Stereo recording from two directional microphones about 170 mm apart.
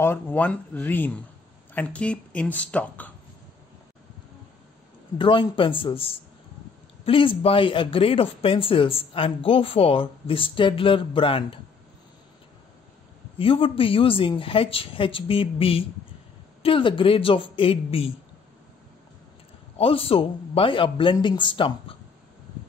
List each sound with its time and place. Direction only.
0.0 s speech: 10° left (ahead or behind)
5.1 s speech: 30° left (ahead or behind)
13.4 s speech: 30° left (ahead or behind)
19.8 s speech: 35° left (ahead or behind)